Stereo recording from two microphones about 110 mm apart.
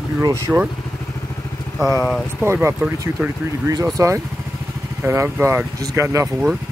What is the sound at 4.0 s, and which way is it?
Speech, 30° right (ahead or behind).